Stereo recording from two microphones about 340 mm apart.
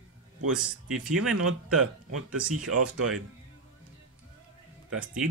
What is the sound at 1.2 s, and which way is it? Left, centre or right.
Speech, right.